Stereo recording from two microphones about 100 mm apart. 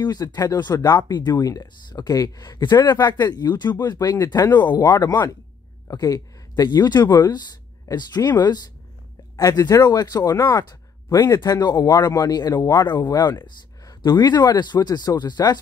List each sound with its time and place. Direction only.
0.0 s speech: 45° left (ahead or behind)